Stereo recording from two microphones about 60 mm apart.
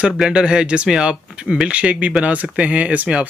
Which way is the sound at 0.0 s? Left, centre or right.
Centre.